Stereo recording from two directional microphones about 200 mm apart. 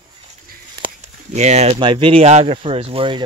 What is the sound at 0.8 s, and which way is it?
Speech, 35° right (ahead or behind).